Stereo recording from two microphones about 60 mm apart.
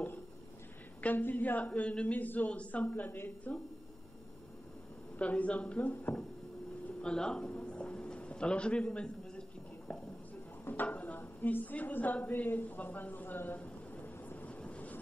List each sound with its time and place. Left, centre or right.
1.0 s speech: left
5.2 s speech: left
7.0 s a sound: centre
10.6 s a sound: left
11.1 s a woman's voice: left
13.6 s vehicle: left